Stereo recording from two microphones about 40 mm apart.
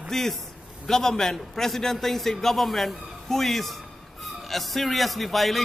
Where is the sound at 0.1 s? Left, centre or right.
Centre.